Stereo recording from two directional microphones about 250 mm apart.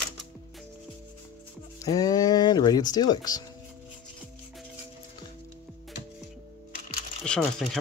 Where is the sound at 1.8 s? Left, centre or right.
Centre.